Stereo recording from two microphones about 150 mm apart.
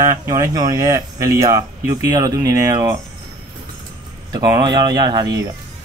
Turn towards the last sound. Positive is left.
turn(degrees=-25)  # may be behind; listen again after turning